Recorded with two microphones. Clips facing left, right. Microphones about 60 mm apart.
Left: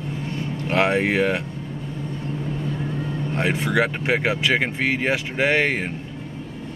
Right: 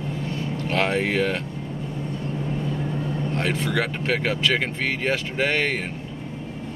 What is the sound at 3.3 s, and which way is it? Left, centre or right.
Speech, centre.